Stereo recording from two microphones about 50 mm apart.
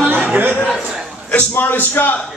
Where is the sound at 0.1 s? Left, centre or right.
Right.